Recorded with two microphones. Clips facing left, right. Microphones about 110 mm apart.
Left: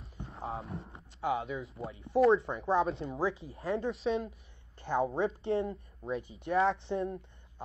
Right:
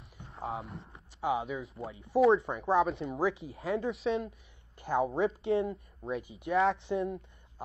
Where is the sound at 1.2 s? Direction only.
15° right (ahead or behind).